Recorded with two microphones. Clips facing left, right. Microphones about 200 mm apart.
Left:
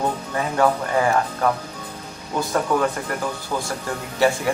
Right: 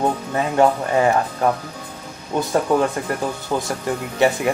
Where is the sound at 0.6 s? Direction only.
25° right (ahead or behind).